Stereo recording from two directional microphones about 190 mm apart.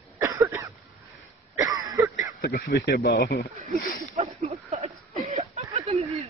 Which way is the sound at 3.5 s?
35° right (ahead or behind).